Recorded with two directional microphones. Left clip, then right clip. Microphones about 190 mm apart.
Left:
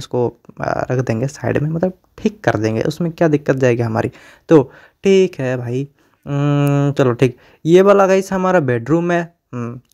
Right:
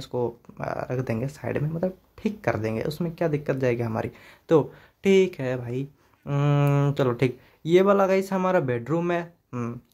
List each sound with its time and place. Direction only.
0.0 s speech: 35° left (ahead or behind)